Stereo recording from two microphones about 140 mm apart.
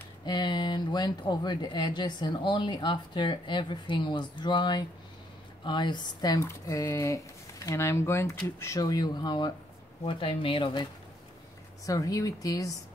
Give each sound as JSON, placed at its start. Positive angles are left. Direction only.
{"t": 0.2, "sound": "speech", "side_deg": 30}
{"t": 11.8, "sound": "speech", "side_deg": 25}